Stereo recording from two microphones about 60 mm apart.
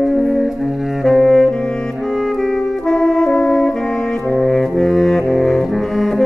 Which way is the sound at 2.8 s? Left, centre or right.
Centre.